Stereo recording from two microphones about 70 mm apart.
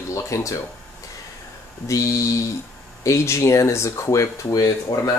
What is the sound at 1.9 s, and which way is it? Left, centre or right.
Speech, left.